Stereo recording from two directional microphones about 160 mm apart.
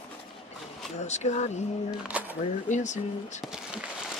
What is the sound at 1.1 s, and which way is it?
Speech, 45° left (ahead or behind).